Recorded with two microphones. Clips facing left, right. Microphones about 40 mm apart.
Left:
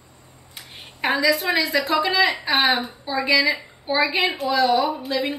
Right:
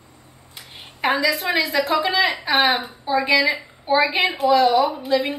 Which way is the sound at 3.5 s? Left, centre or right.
Centre.